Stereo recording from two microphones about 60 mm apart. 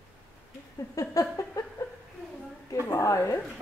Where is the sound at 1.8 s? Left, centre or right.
Left.